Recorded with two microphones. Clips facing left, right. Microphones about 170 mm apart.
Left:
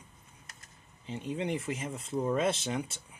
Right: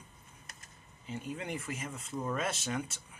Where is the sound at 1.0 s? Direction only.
25° left (ahead or behind).